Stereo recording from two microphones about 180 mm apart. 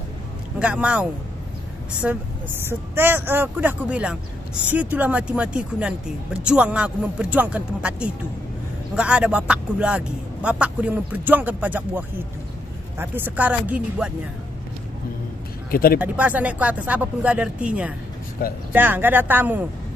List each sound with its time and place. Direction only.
0.6 s speech: 5° right (ahead or behind)
2.0 s speech: 5° right (ahead or behind)
15.7 s speech: 55° left (ahead or behind)
16.0 s speech: 10° right (ahead or behind)